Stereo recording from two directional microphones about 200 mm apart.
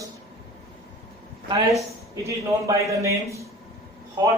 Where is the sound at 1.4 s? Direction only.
15° right (ahead or behind).